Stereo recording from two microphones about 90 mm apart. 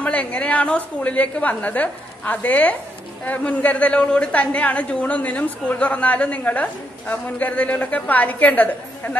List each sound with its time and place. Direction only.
0.0 s a woman's voice: 15° left (ahead or behind)